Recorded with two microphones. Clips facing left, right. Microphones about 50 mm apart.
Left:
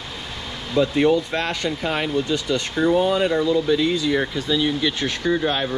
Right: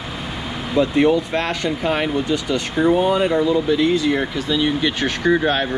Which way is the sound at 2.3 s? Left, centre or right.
Right.